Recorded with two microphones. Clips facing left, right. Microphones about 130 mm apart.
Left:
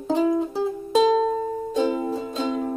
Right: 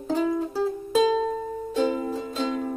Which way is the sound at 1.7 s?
20° left (ahead or behind).